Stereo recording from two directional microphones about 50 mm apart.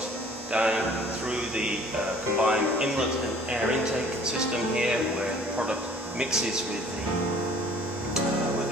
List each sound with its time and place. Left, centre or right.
0.5 s a man's voice: right
2.3 s speech: right
5.6 s speech: centre